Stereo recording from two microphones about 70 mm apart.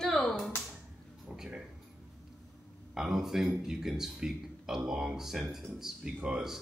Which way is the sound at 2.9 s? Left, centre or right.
Centre.